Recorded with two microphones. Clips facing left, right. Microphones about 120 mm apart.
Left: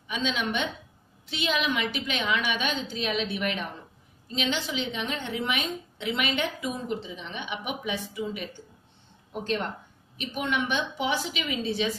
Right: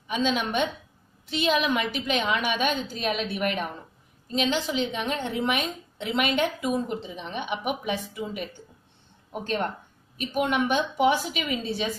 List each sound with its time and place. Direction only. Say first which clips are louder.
0.1 s a woman's voice: right 4 dB; 40° right (ahead or behind)